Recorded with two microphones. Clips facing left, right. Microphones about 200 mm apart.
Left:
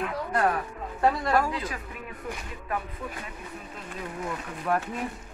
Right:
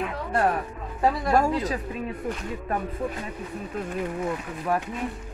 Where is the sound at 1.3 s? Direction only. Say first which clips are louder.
Right 4 dB; 40° right (ahead or behind).